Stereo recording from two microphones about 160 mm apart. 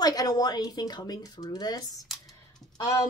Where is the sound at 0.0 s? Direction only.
25° left (ahead or behind).